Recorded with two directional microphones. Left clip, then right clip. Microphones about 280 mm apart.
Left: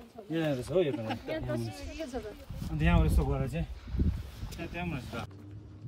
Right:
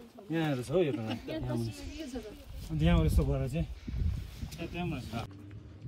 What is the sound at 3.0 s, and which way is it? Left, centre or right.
Speech, centre.